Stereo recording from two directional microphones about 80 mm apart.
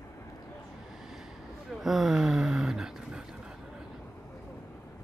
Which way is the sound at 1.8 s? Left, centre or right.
Centre.